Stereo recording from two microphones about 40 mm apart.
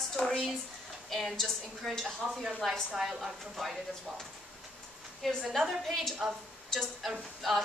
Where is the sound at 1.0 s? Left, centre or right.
Centre.